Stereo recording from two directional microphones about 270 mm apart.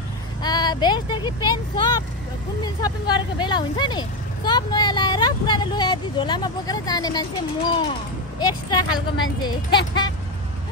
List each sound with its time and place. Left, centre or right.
0.4 s speech: centre